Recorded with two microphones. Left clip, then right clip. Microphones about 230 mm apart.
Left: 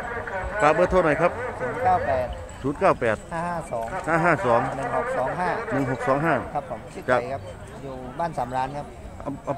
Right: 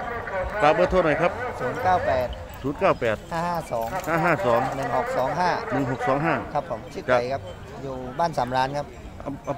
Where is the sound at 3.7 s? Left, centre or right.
Right.